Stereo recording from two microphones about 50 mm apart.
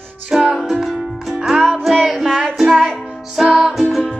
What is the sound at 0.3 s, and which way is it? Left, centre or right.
Music, centre.